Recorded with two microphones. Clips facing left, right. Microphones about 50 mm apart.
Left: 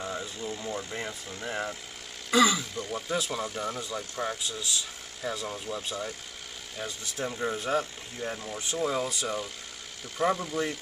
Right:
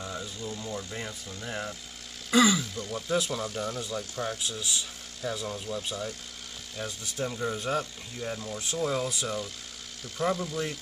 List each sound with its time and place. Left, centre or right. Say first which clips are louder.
0.0 s speech: left 2 dB; centre
2.3 s speech: even; centre